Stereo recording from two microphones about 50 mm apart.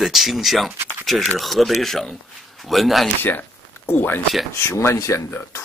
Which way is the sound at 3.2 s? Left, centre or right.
Left.